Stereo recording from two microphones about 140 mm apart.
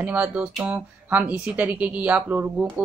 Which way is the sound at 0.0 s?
10° right (ahead or behind).